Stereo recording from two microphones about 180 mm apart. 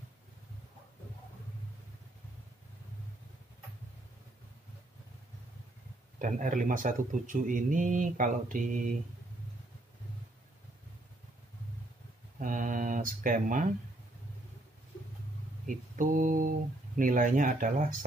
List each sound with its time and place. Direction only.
6.2 s speech: 45° right (ahead or behind)
12.4 s a sound: 45° right (ahead or behind)
15.6 s speech: 45° right (ahead or behind)